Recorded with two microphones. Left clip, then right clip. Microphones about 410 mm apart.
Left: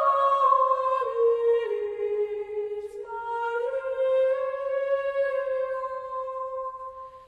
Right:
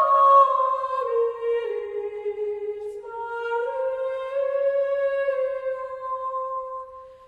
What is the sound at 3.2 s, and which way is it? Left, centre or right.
Music, centre.